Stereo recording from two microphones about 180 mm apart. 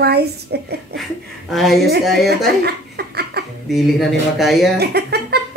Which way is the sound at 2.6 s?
60° right (ahead or behind).